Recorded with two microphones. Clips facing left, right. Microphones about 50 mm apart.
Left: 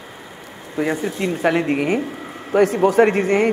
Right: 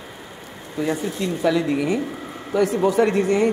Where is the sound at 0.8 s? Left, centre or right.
Left.